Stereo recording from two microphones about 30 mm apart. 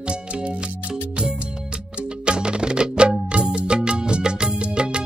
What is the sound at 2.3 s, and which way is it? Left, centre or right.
Music, right.